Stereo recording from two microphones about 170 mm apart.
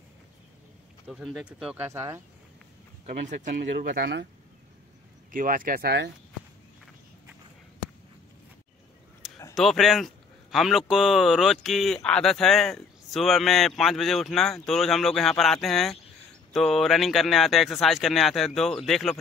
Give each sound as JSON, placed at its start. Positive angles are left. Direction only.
{"t": 1.0, "sound": "speech", "side_deg": 0}
{"t": 3.1, "sound": "speech", "side_deg": -50}
{"t": 5.3, "sound": "speech", "side_deg": -55}
{"t": 9.2, "sound": "a sound", "side_deg": 0}
{"t": 9.6, "sound": "speech", "side_deg": 0}